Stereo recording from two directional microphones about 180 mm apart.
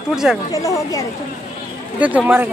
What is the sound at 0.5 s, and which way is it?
Speech, 20° left (ahead or behind).